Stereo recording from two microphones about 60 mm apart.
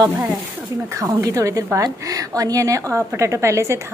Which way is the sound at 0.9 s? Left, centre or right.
Right.